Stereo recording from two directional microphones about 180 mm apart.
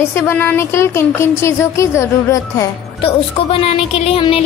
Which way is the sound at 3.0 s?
35° left (ahead or behind).